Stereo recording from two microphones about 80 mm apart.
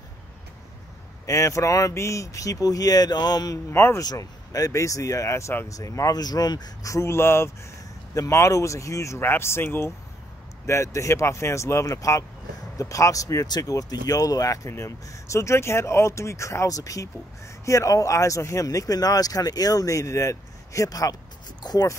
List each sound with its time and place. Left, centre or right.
1.2 s speech: left
3.7 s speech: left
4.0 s speech: left
5.7 s speech: left
6.9 s speech: left